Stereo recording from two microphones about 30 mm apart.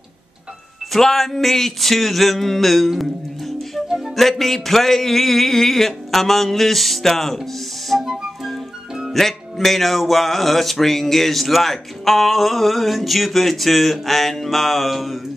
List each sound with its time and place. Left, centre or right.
0.9 s a sound: centre
4.2 s speech: centre
7.9 s music: centre
9.1 s music: centre